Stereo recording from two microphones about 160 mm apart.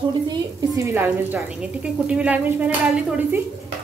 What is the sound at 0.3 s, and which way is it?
A woman's voice, 20° right (ahead or behind).